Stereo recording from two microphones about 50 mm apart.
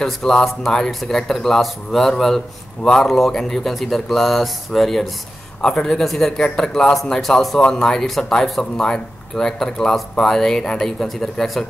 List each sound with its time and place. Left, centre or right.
0.0 s a man's voice: centre